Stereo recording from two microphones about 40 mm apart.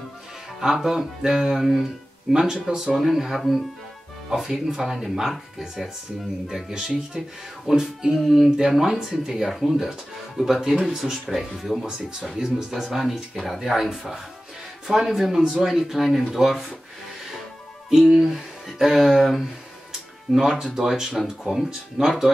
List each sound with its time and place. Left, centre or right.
0.6 s speech: centre
2.3 s speech: centre
6.4 s speech: centre
13.8 s speech: centre
17.8 s speech: centre
20.3 s speech: centre